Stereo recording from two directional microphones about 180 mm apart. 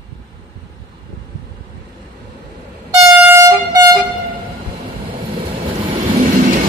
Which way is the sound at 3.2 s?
10° right (ahead or behind).